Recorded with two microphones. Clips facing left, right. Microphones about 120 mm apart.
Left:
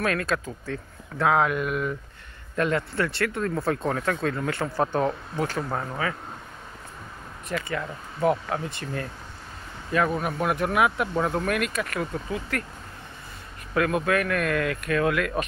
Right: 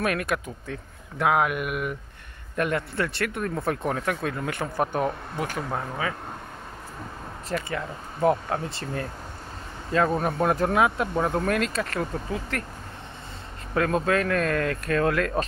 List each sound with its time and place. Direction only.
0.0 s speech: 20° right (ahead or behind)
7.4 s speech: 25° right (ahead or behind)
13.7 s speech: 30° right (ahead or behind)